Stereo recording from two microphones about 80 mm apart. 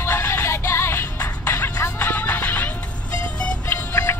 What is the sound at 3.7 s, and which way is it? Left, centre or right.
Music, left.